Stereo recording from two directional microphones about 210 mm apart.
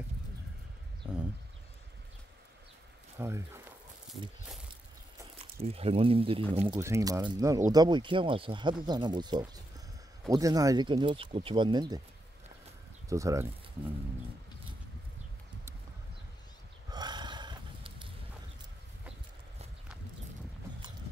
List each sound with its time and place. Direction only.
3.2 s speech: 15° right (ahead or behind)
5.4 s speech: 30° right (ahead or behind)
6.8 s speech: 15° right (ahead or behind)
13.1 s speech: 15° right (ahead or behind)
16.9 s burping: 20° right (ahead or behind)